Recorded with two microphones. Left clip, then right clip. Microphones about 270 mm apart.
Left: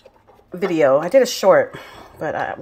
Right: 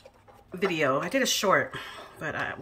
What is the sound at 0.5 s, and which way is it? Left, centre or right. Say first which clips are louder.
Speech: left 10 dB; centre.